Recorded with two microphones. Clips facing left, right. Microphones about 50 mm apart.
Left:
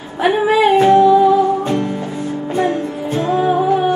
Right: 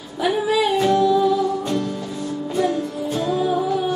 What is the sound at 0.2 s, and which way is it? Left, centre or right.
Music, left.